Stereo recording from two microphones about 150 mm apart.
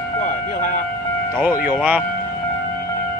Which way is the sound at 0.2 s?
60° left (ahead or behind).